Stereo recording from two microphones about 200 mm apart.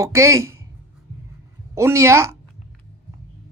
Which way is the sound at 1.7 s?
15° right (ahead or behind).